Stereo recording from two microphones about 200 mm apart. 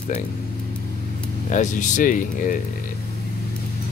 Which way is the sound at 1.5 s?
40° left (ahead or behind).